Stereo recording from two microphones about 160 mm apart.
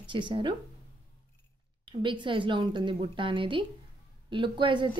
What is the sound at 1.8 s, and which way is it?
A woman's voice, 30° right (ahead or behind).